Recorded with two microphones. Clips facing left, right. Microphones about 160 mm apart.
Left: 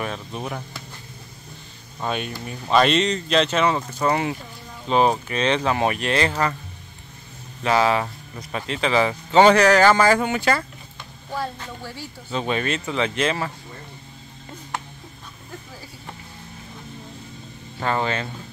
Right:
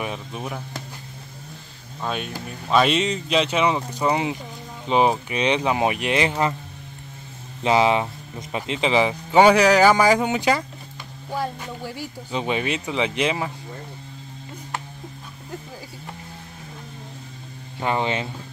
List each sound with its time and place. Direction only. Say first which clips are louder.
0.0 s speech: even; 10° right (ahead or behind)
2.0 s speech: left 1 dB; centre (ahead or behind); by 6.5 s 15° right (ahead or behind)
7.6 s speech: right 1 dB; 20° right (ahead or behind)
17.7 s speech: even; 15° right (ahead or behind)